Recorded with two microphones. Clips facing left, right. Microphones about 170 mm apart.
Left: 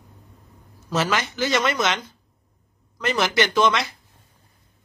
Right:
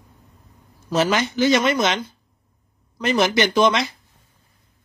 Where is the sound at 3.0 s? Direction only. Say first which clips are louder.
Right 3 dB; 20° right (ahead or behind).